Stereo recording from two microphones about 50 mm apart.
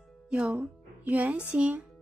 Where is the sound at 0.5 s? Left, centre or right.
Right.